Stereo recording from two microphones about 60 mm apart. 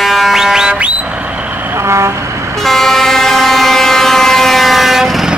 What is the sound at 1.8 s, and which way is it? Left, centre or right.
Vehicle, right.